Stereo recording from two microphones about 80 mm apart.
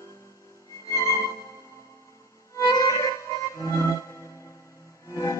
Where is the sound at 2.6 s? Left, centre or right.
Left.